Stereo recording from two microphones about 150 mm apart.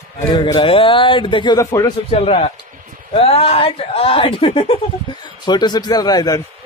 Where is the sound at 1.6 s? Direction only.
20° left (ahead or behind).